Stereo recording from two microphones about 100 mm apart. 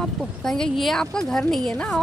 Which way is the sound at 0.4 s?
5° left (ahead or behind).